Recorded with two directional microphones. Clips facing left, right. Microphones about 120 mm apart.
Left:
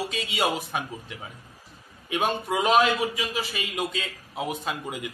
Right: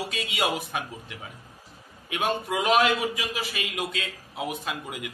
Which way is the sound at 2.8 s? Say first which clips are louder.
Left 1 dB; 10° right (ahead or behind).